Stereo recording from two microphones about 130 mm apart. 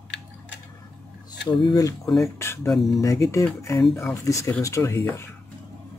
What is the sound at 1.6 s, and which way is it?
Speech, 30° left (ahead or behind).